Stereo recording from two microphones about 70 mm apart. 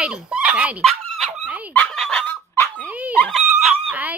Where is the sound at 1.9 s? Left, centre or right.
Centre.